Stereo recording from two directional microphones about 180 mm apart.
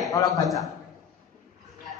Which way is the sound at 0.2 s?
20° left (ahead or behind).